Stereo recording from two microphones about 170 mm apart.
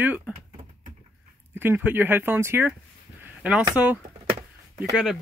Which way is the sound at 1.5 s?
10° right (ahead or behind).